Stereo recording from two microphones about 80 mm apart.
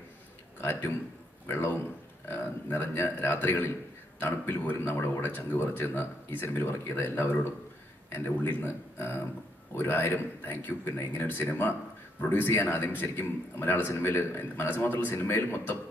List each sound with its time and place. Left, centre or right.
0.6 s a man's voice: left